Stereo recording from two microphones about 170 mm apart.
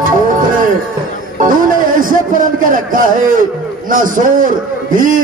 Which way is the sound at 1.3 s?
50° right (ahead or behind).